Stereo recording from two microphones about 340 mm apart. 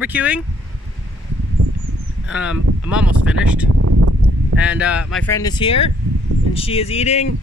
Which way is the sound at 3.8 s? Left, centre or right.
Right.